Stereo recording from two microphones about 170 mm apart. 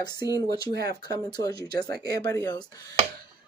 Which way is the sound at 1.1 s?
20° left (ahead or behind).